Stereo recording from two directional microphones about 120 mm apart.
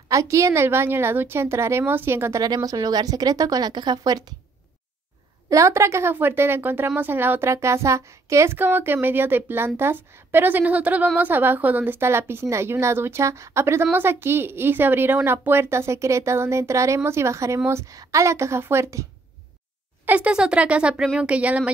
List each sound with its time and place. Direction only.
0.1 s a woman's voice: 25° right (ahead or behind)
2.4 s speech: 30° right (ahead or behind)
5.5 s a woman's voice: 25° right (ahead or behind)
20.1 s speech: 10° right (ahead or behind)